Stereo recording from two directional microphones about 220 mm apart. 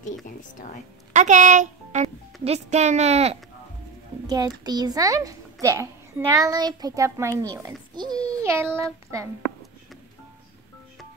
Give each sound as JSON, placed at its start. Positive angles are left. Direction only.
{"t": 0.0, "sound": "a woman's voice", "side_deg": 35}
{"t": 1.1, "sound": "speech", "side_deg": -35}
{"t": 4.3, "sound": "a child's voice", "side_deg": -15}